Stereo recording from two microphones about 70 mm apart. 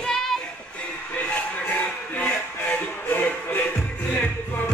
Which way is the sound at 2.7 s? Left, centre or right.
Left.